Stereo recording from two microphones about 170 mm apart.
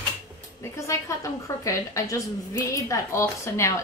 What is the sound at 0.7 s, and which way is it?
A woman's voice, 20° left (ahead or behind).